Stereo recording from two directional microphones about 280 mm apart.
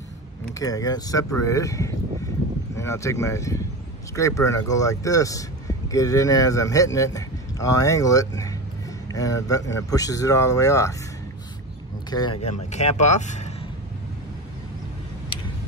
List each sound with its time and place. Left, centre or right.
0.6 s speech: centre
12.1 s speech: centre